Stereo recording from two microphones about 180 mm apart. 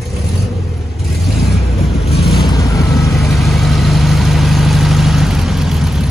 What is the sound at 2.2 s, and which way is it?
Vehicle, centre (ahead or behind).